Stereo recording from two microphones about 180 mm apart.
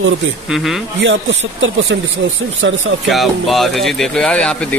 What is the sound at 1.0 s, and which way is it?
Speech, 90° right.